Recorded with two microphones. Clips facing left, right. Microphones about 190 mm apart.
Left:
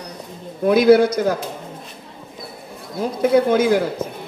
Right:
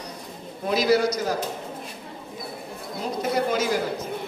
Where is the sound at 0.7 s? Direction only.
55° left (ahead or behind).